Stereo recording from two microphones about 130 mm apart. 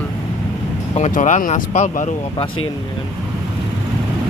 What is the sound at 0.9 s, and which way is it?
Speech, 70° left (ahead or behind).